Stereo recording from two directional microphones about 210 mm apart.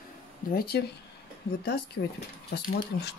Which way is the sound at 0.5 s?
45° left (ahead or behind).